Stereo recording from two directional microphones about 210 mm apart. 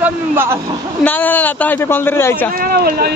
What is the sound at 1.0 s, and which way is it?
A man's voice, 10° left (ahead or behind).